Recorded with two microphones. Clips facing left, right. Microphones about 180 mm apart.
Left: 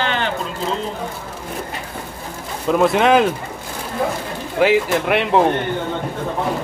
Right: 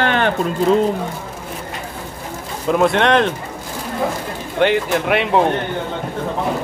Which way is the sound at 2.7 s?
Centre (ahead or behind).